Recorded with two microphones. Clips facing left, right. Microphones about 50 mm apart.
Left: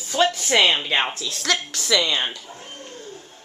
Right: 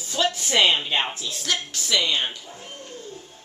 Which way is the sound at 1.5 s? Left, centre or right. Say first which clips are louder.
Left 4 dB; left.